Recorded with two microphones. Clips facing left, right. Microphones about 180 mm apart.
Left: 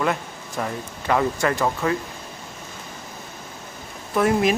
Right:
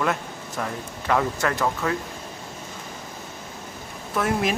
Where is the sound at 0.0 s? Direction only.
5° left (ahead or behind).